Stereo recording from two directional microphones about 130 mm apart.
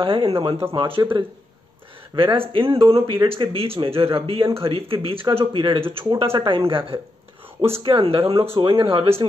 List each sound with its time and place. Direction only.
0.0 s speech: 45° right (ahead or behind)
7.8 s speech: 40° right (ahead or behind)